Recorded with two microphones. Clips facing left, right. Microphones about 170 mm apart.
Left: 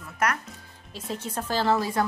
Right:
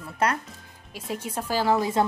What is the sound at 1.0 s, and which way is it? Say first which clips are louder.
A woman's voice: right 1 dB; 10° right (ahead or behind).